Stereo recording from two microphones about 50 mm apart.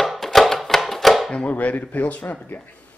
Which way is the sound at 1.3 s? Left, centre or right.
Left.